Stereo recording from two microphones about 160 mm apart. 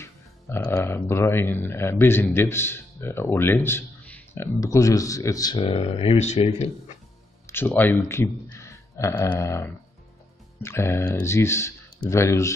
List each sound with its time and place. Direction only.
0.0 s speech: 15° left (ahead or behind); by 6.7 s 40° left (ahead or behind)
7.4 s a sound: 15° left (ahead or behind)
9.3 s speech: 20° left (ahead or behind)